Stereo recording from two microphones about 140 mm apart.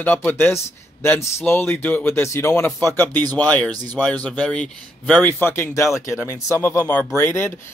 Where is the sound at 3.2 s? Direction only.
30° right (ahead or behind).